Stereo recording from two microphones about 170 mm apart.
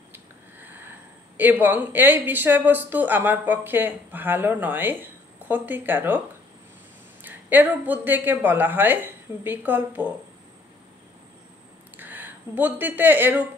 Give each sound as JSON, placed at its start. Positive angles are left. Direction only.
{"t": 0.1, "sound": "speech", "side_deg": -10}
{"t": 7.2, "sound": "speech", "side_deg": -10}
{"t": 12.0, "sound": "speech", "side_deg": -10}